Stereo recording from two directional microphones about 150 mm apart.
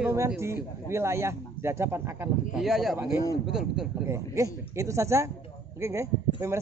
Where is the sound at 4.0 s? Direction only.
20° right (ahead or behind).